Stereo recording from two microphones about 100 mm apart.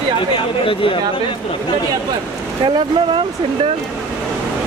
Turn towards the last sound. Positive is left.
turn(degrees=-50)  # may be behind; listen again after turning